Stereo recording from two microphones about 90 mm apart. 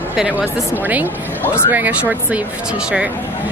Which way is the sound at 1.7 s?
20° right (ahead or behind).